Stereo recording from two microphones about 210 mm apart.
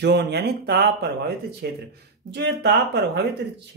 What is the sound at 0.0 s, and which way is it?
Speech, 50° right (ahead or behind).